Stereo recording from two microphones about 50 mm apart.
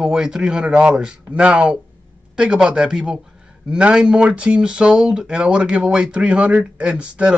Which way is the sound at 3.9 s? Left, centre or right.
Centre.